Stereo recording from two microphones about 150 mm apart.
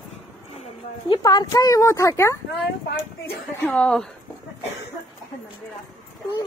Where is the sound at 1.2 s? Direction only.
25° left (ahead or behind).